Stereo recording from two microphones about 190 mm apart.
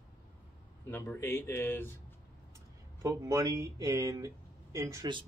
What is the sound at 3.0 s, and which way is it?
Speech, 15° right (ahead or behind).